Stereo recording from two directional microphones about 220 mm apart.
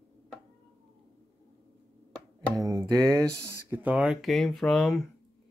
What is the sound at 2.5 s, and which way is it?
Music, 15° right (ahead or behind).